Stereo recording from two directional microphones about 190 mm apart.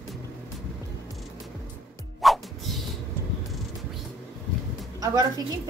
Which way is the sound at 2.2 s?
Centre (ahead or behind).